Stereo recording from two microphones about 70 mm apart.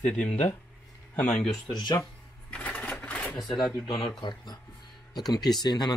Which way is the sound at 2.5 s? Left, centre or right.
Left.